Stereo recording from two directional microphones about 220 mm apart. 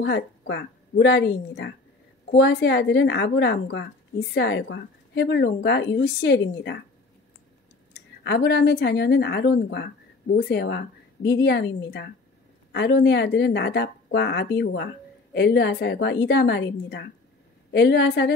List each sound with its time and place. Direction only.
0.0 s a woman's voice: 50° left (ahead or behind)
7.9 s a woman's voice: 50° left (ahead or behind)